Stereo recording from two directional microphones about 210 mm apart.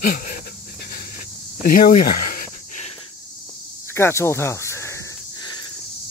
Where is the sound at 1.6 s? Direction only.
40° left (ahead or behind).